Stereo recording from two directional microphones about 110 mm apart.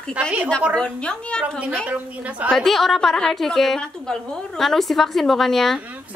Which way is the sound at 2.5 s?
Centre (ahead or behind).